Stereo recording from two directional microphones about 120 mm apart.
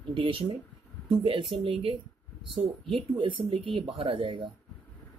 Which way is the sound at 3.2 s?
45° right (ahead or behind).